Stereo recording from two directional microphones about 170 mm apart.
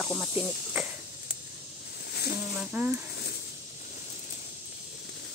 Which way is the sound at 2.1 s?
65° left (ahead or behind).